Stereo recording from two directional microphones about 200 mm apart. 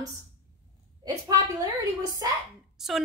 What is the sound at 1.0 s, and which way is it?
A woman's voice, 20° right (ahead or behind).